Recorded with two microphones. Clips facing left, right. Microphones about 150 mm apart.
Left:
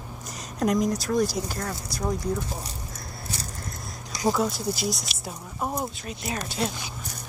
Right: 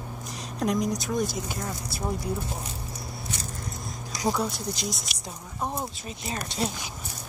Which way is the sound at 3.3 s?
35° left (ahead or behind).